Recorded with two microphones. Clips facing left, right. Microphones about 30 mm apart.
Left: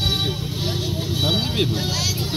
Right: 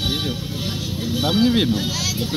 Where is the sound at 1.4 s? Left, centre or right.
Right.